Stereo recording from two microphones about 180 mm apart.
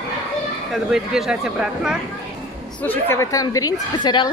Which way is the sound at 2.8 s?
10° left (ahead or behind).